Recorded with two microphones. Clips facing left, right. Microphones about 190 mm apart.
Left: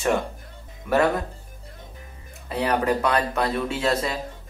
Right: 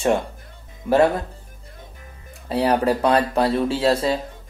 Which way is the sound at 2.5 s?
30° right (ahead or behind).